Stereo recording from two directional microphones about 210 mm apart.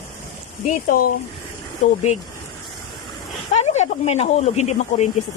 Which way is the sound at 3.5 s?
30° left (ahead or behind).